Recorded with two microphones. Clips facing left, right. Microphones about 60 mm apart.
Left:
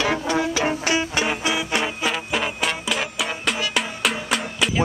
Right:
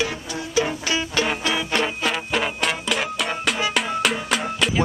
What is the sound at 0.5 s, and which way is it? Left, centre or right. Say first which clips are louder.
Music: left 1 dB; left.